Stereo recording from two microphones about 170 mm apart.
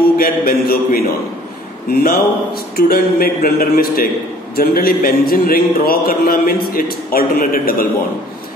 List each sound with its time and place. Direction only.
0.2 s speech: 60° left (ahead or behind)